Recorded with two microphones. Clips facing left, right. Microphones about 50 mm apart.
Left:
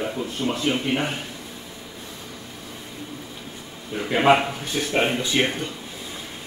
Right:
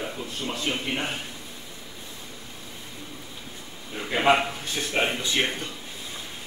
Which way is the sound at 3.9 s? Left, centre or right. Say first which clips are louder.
Left 4 dB; centre.